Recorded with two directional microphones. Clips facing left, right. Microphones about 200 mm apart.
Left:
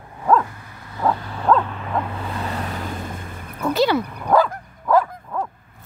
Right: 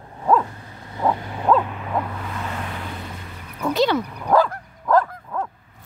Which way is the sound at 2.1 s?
30° left (ahead or behind).